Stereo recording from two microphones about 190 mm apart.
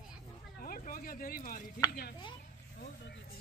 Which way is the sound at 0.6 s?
50° left (ahead or behind).